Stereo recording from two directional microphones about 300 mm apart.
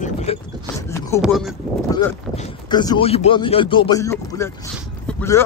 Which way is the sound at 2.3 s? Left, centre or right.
Centre.